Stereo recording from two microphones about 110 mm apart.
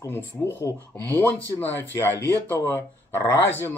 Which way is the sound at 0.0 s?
20° left (ahead or behind).